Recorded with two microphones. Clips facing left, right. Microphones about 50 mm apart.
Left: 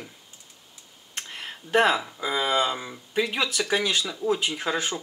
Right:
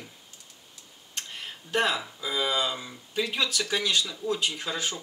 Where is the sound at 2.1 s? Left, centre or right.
Left.